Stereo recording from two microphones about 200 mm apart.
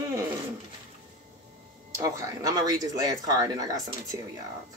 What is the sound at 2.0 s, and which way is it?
Speech, 15° right (ahead or behind).